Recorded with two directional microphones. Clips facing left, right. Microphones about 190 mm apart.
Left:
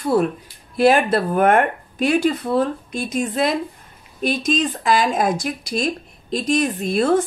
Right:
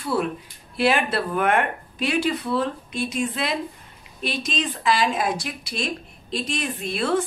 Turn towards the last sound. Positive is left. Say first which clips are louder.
# left 6 dB
turn(degrees=45)  # may be behind; listen again after turning